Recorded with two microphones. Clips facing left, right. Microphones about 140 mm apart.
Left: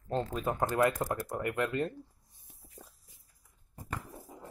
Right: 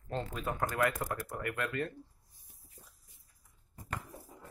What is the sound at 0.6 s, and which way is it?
Speech, 25° left (ahead or behind).